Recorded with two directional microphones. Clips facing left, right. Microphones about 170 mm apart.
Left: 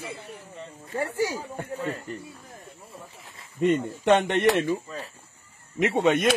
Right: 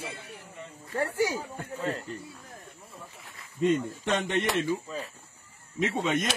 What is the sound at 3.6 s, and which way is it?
A man's voice, 65° left (ahead or behind).